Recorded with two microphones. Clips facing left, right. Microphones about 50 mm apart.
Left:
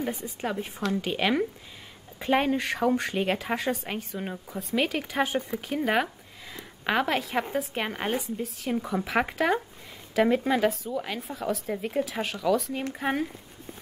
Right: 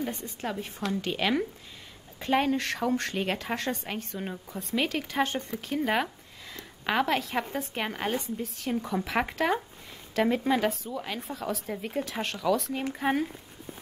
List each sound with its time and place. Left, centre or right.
0.0 s a woman's voice: centre